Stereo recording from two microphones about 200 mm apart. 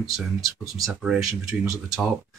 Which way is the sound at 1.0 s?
5° right (ahead or behind).